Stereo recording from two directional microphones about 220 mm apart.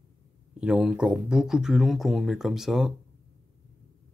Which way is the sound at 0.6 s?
5° right (ahead or behind).